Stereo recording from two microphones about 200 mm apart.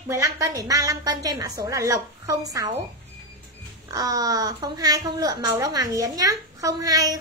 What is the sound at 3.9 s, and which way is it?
A woman's voice, 20° right (ahead or behind).